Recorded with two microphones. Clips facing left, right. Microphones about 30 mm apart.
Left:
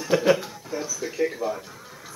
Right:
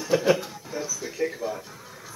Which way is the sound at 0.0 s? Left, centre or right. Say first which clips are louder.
Left 1 dB; centre.